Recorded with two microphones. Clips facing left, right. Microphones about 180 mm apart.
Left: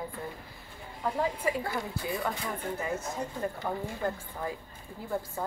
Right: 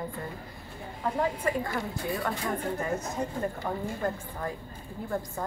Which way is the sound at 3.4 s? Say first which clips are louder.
Right 1 dB; centre (ahead or behind).